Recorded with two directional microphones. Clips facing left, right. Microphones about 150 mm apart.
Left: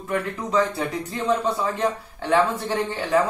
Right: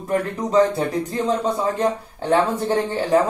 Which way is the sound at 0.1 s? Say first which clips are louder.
Right 4 dB; 35° right (ahead or behind).